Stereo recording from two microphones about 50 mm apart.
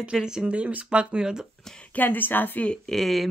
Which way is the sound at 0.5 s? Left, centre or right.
Right.